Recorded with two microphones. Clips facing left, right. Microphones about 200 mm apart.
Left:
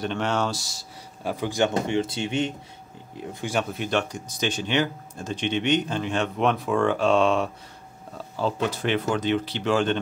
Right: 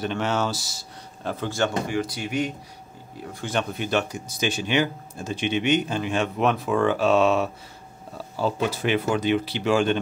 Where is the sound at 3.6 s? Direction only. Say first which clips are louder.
Right 1 dB; centre (ahead or behind).